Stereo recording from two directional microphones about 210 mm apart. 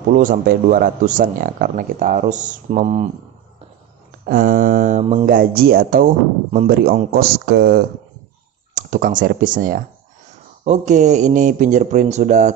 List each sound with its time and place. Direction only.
0.1 s speech: 40° right (ahead or behind)
4.3 s speech: 40° right (ahead or behind)
8.7 s speech: 40° right (ahead or behind)